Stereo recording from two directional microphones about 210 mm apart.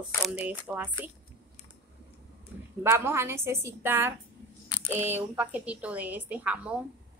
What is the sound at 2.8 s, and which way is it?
Speech, 10° right (ahead or behind).